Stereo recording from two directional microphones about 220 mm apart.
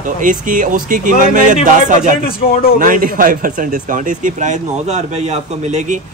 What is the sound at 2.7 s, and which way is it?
Speech, 40° right (ahead or behind).